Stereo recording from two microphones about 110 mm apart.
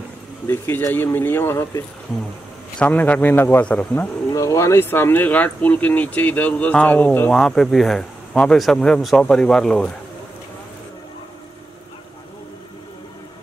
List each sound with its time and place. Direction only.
0.5 s speech: 20° left (ahead or behind)
2.8 s speech: 15° left (ahead or behind)
4.3 s speech: 30° left (ahead or behind); by 9.9 s 5° left (ahead or behind)